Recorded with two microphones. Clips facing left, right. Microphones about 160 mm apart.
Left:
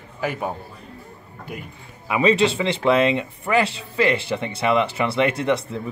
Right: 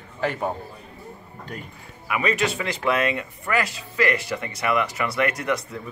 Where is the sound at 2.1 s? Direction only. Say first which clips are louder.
Left 6 dB; 25° left (ahead or behind).